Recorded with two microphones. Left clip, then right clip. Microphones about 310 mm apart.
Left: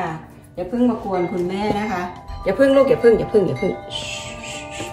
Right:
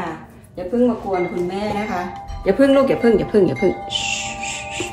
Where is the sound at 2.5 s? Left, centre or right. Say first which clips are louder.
Even; centre.